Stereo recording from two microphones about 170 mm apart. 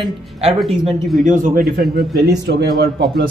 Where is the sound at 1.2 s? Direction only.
50° right (ahead or behind).